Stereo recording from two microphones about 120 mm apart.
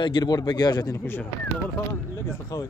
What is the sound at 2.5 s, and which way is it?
Speech, 30° left (ahead or behind).